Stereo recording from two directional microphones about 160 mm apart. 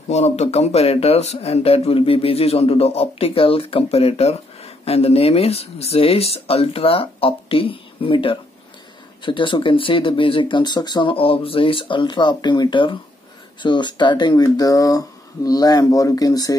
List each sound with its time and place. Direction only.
0.1 s speech: 45° left (ahead or behind); by 16.5 s 20° left (ahead or behind)